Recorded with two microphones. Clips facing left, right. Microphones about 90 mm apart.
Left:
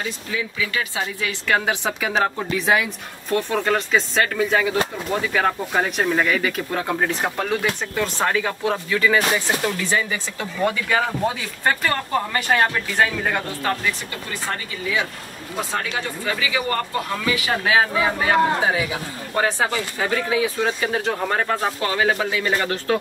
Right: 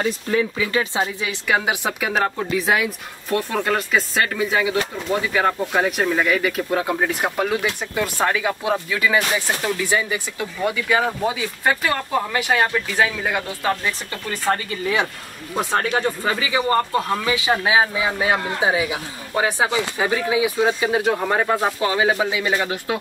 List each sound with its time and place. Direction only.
0.0 s speech: 45° right (ahead or behind)
0.7 s speech: 25° right (ahead or behind)
1.5 s speech: 5° right (ahead or behind)
15.7 s speech: 40° right (ahead or behind); by 22.9 s 10° right (ahead or behind)